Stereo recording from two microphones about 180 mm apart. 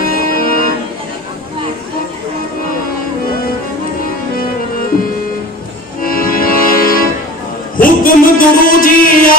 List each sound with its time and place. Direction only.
0.0 s music: 55° left (ahead or behind)
6.0 s music: 55° left (ahead or behind)
7.7 s a sound: 50° left (ahead or behind)